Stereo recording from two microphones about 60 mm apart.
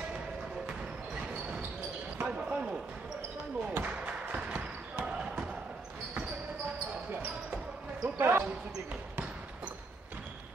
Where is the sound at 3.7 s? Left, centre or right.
Right.